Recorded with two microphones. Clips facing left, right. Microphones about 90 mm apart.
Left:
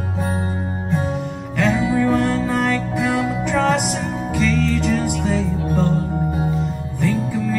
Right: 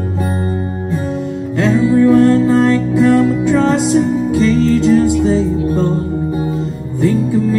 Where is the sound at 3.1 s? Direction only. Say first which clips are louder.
Right 9 dB; 5° left (ahead or behind).